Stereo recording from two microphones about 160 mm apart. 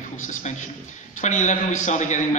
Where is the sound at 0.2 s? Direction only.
50° left (ahead or behind).